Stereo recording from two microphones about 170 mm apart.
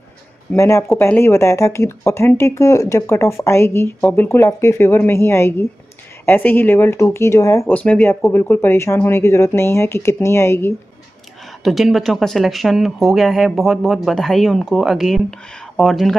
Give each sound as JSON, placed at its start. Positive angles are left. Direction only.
{"t": 0.6, "sound": "speech", "side_deg": 15}
{"t": 11.6, "sound": "speech", "side_deg": 0}